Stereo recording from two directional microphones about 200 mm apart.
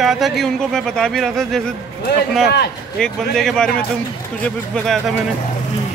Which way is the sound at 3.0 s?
5° left (ahead or behind).